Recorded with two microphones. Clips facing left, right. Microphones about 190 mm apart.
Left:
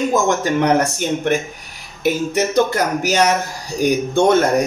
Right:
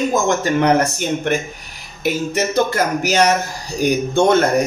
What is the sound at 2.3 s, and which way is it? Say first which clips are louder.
Speech: even; 15° left (ahead or behind).